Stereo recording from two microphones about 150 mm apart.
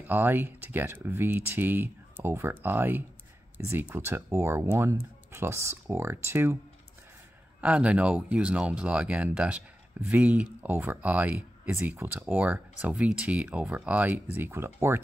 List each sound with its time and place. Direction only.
0.0 s speech: 15° right (ahead or behind)
7.6 s speech: 10° right (ahead or behind)